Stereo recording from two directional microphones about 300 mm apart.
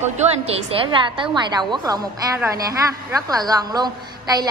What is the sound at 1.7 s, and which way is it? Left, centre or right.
A woman's voice, centre.